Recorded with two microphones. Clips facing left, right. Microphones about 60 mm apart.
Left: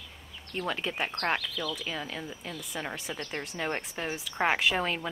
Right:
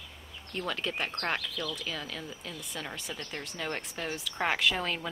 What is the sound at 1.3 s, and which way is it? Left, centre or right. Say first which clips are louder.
Speech: left 2 dB; left.